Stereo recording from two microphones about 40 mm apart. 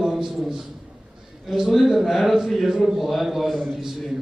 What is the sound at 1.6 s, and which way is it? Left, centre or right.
A man's voice, centre.